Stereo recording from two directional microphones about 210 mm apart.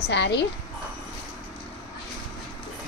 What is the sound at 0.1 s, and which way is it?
Speech, 55° left (ahead or behind).